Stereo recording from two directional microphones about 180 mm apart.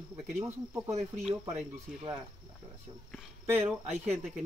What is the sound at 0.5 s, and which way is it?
Speech, 15° right (ahead or behind).